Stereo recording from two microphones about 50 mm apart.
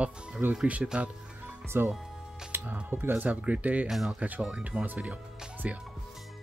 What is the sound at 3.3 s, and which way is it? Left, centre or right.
Speech, right.